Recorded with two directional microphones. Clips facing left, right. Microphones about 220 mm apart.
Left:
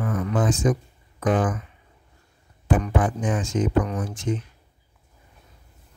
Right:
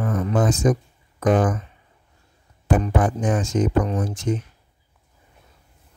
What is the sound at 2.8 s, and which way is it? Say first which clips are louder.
Speech: right 2 dB; 40° right (ahead or behind).